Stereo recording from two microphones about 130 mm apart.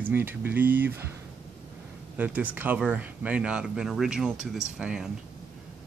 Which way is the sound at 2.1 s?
10° right (ahead or behind).